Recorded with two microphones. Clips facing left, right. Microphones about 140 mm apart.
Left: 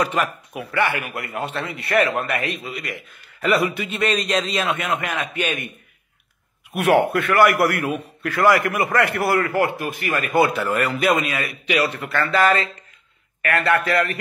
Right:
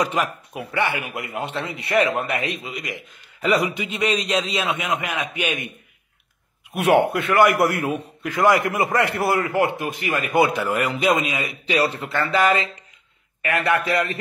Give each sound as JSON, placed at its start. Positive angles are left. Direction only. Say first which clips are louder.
{"t": 0.0, "sound": "a man's voice", "louder": "left 1 dB", "side_deg": -15}
{"t": 0.5, "sound": "a man's voice", "louder": "left 2 dB", "side_deg": -25}
{"t": 6.7, "sound": "a man's voice", "louder": "even", "side_deg": -25}
{"t": 11.6, "sound": "a man's voice", "louder": "right 1 dB", "side_deg": -30}